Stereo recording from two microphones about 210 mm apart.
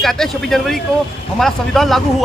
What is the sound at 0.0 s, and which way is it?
Speech, centre (ahead or behind).